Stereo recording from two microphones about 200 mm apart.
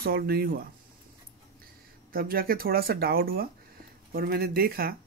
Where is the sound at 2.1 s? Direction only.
45° right (ahead or behind).